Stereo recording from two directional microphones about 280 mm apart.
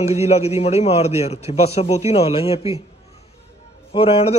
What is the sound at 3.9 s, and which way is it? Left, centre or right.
Speech, centre.